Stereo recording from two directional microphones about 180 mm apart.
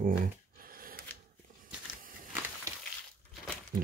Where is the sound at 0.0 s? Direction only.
50° right (ahead or behind).